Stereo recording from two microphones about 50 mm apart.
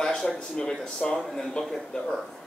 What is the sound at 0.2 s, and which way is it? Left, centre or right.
Speech, centre.